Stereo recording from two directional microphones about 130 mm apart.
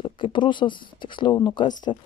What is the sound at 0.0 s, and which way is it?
A woman's voice, 35° left (ahead or behind).